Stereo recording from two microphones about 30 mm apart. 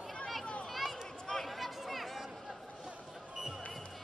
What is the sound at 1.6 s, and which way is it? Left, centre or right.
Chatter, centre.